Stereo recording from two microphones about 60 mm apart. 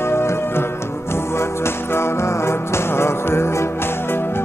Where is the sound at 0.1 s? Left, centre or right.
Left.